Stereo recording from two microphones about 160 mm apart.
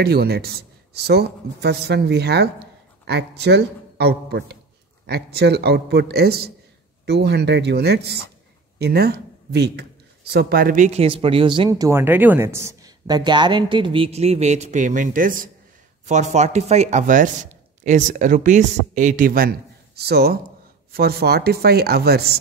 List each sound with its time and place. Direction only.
0.0 s speech: 85° right
7.1 s speech: 90° right
8.7 s speech: 80° right; by 11.9 s 30° right (ahead or behind)
11.9 s speech: 15° right (ahead or behind); by 15.5 s 60° right (ahead or behind)
16.1 s speech: 45° right (ahead or behind); by 22.4 s 85° right